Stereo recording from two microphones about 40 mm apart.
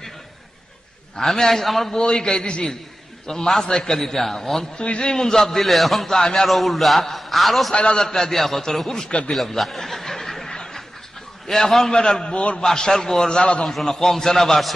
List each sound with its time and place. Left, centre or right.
1.2 s a man's voice: centre
2.0 s a man's voice: centre
4.7 s a man's voice: left
6.4 s a man's voice: centre
7.7 s a man's voice: left
8.0 s a man's voice: centre
9.3 s snicker: centre
11.4 s a man's voice: centre
13.8 s a man's voice: centre